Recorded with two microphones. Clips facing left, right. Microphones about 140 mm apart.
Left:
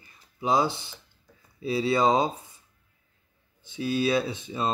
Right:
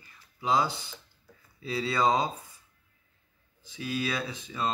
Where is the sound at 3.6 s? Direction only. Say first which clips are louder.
Left 6 dB; 25° left (ahead or behind).